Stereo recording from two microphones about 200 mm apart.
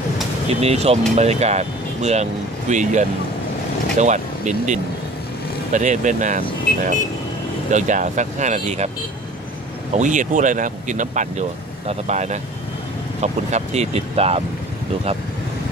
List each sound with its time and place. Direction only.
0.6 s speech: 30° right (ahead or behind)
9.9 s speech: 40° right (ahead or behind)